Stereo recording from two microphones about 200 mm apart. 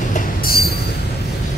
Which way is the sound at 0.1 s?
50° left (ahead or behind).